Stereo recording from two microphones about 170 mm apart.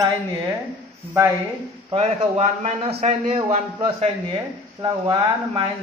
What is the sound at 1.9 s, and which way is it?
A man's voice, 40° right (ahead or behind).